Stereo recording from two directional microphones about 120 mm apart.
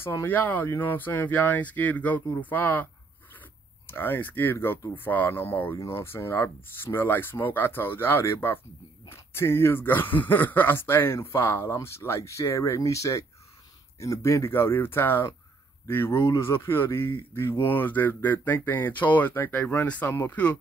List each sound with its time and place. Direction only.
0.0 s speech: 20° left (ahead or behind)